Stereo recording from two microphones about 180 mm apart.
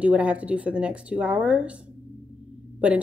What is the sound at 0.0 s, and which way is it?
Speech, 5° right (ahead or behind).